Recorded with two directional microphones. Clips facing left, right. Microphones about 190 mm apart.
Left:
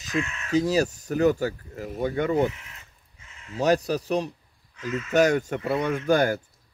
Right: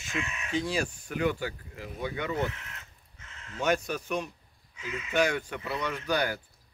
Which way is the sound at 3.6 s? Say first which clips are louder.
Left 6 dB; 35° left (ahead or behind).